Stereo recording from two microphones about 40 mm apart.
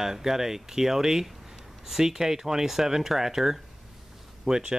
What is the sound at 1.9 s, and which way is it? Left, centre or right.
Speech, centre.